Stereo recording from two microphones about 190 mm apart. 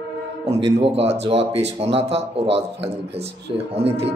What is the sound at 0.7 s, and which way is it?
Speech, 30° right (ahead or behind).